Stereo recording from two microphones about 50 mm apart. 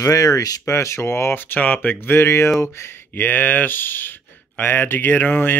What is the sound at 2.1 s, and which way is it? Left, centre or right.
Speech, left.